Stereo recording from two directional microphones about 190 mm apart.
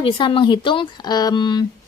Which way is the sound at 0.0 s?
25° left (ahead or behind).